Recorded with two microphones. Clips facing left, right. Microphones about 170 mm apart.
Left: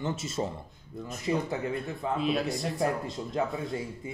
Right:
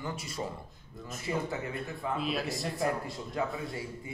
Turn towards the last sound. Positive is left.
turn(degrees=25)  # may be behind; listen again after turning